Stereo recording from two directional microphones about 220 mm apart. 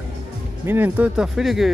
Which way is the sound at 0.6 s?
10° right (ahead or behind).